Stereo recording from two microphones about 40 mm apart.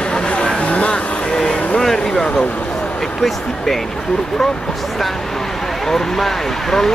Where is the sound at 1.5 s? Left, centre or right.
Left.